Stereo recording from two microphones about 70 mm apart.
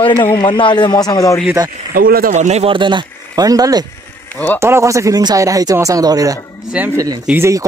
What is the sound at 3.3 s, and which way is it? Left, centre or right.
Speech, right.